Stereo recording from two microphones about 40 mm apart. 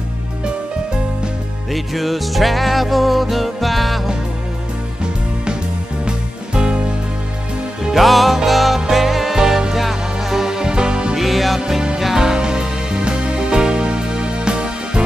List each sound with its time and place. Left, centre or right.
1.7 s music: centre
6.0 s music: right
7.9 s music: centre; by 11.1 s right
11.1 s music: centre; by 15.0 s right